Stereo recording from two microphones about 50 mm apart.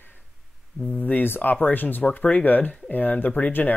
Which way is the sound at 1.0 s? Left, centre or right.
Left.